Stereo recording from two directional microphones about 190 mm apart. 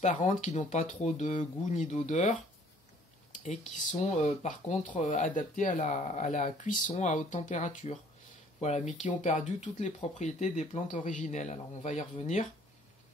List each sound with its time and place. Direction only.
0.0 s speech: 40° left (ahead or behind)